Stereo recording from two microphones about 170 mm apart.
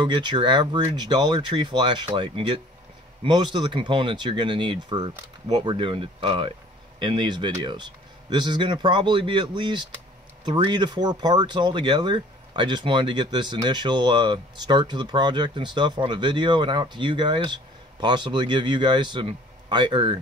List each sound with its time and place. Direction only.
0.0 s speech: 25° right (ahead or behind)